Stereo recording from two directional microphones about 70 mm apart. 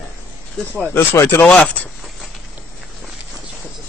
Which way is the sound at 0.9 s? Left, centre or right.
Left.